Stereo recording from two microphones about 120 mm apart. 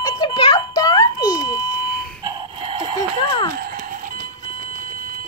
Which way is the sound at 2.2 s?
45° right (ahead or behind).